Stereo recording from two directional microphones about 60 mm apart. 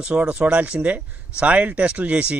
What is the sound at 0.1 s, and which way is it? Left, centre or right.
A man's voice, centre.